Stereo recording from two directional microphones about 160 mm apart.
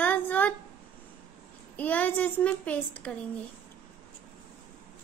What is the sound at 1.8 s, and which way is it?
Speech, 10° left (ahead or behind).